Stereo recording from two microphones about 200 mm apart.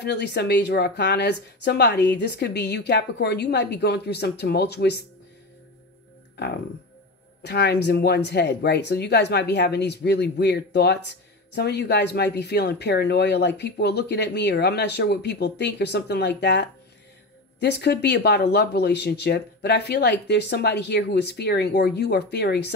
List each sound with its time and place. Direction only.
0.0 s speech: 55° left (ahead or behind)
7.4 s speech: 55° left (ahead or behind)